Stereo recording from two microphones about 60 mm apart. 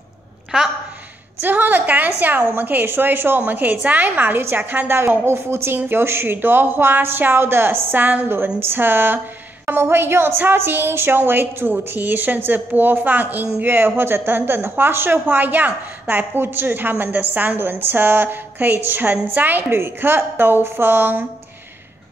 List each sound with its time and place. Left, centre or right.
1.4 s a woman's voice: right